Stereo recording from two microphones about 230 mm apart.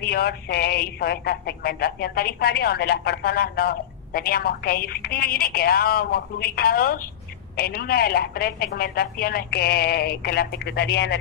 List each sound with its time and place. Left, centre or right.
0.0 s speech: left